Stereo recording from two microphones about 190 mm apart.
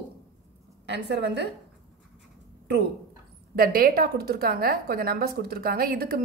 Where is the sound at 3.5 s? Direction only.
50° right (ahead or behind).